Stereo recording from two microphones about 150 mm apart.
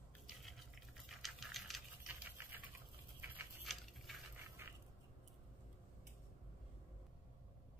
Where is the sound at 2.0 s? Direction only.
10° right (ahead or behind).